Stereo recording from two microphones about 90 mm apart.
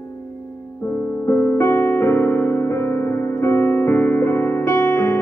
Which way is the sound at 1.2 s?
25° left (ahead or behind).